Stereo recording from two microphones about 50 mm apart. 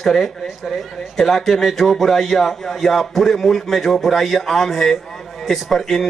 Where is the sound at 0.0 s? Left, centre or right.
Centre.